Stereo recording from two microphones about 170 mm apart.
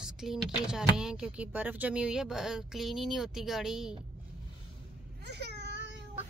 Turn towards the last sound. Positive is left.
turn(degrees=-80)